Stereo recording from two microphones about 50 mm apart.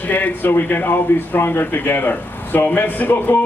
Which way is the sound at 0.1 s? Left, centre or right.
Left.